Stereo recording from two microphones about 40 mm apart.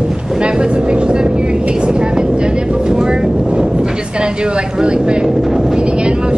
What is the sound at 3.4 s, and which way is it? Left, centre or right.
Speech, centre.